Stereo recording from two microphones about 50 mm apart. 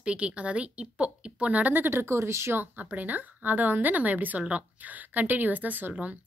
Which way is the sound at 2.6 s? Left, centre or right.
Right.